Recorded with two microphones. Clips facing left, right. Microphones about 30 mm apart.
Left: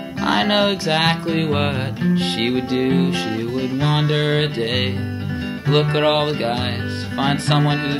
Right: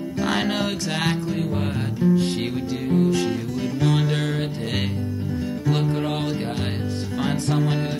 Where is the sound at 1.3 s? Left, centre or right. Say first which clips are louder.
Left 6 dB; left.